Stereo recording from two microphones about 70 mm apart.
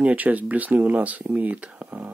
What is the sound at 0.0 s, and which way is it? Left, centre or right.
Speech, right.